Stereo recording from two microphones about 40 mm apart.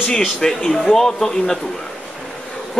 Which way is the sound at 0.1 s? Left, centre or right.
Centre.